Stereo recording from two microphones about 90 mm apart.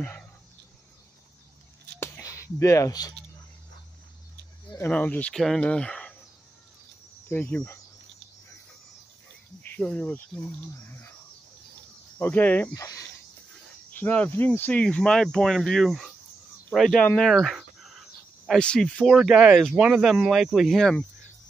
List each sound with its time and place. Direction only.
2.0 s a sound: 30° left (ahead or behind)
4.8 s speech: 15° left (ahead or behind)
5.3 s speech: 5° left (ahead or behind)
7.2 s speech: 25° left (ahead or behind)
9.6 s cricket: 10° left (ahead or behind)
12.2 s speech: 20° left (ahead or behind)
12.7 s speech: 40° left (ahead or behind)
13.9 s speech: 20° left (ahead or behind); by 17.0 s centre (ahead or behind)
17.2 s cricket: centre (ahead or behind)
18.5 s speech: 10° left (ahead or behind)